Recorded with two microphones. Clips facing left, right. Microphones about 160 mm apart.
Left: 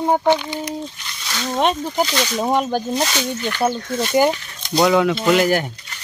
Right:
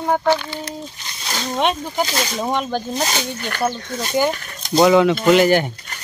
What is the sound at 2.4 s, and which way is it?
Speech, 10° left (ahead or behind).